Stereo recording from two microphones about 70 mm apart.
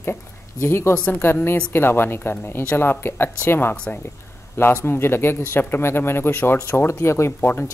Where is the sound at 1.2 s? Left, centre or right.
Left.